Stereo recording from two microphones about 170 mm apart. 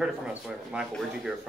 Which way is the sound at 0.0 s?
5° right (ahead or behind).